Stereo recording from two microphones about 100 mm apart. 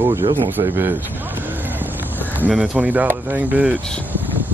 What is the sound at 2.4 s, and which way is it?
Speech, 5° right (ahead or behind).